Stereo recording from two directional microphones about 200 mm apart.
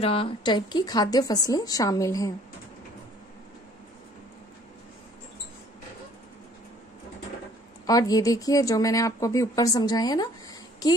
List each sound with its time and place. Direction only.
0.0 s a woman's voice: 30° left (ahead or behind)
7.8 s a woman's voice: 20° left (ahead or behind)